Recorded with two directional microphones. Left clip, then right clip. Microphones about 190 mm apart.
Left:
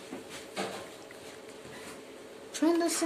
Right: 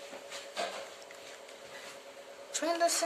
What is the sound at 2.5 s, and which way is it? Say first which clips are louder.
Speech: left 2 dB; centre (ahead or behind).